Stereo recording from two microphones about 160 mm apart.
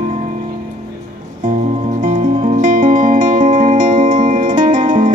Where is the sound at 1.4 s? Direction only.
50° right (ahead or behind).